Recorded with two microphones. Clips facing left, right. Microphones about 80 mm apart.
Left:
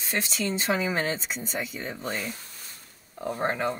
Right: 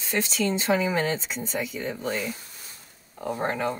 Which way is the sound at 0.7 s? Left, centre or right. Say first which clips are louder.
Right 3 dB; centre.